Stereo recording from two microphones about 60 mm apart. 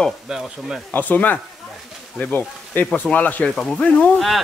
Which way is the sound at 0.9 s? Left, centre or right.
Left.